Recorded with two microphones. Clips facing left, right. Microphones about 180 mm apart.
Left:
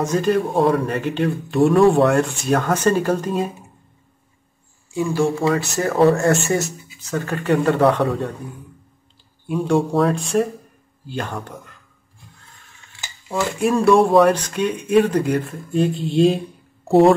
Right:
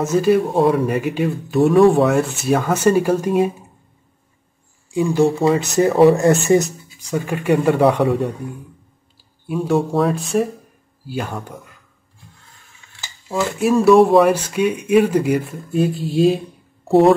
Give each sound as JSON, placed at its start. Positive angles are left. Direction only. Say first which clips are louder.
{"t": 0.0, "sound": "speech", "louder": "right 3 dB", "side_deg": -5}
{"t": 4.9, "sound": "speech", "louder": "right 4 dB", "side_deg": -20}
{"t": 9.5, "sound": "speech", "louder": "even", "side_deg": 0}
{"t": 13.3, "sound": "speech", "louder": "right 2 dB", "side_deg": -5}